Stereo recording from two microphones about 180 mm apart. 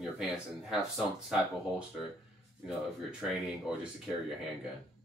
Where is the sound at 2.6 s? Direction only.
5° right (ahead or behind).